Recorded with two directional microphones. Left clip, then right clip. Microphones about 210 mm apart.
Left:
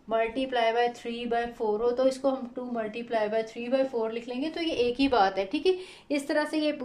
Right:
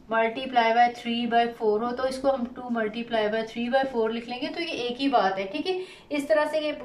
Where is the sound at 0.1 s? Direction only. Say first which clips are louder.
Right 3 dB; 35° left (ahead or behind).